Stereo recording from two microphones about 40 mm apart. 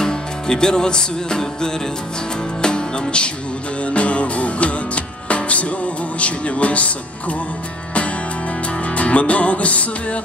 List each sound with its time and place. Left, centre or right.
0.0 s music: centre; by 5.7 s left
6.1 s speech: left
8.8 s music: left